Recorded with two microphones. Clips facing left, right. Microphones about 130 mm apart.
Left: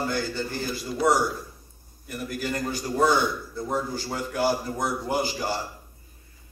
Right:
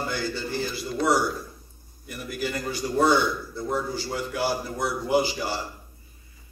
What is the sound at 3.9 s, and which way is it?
A man's voice, 45° left (ahead or behind).